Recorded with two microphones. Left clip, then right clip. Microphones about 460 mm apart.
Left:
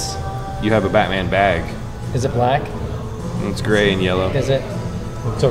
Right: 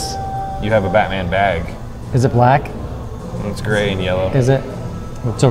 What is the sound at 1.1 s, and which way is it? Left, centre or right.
Speech, right.